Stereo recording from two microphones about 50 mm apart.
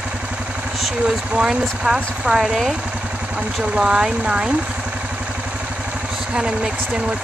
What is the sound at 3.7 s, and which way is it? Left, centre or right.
Speech, centre.